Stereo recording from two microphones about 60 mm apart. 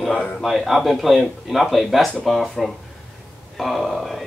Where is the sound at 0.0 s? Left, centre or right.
Centre.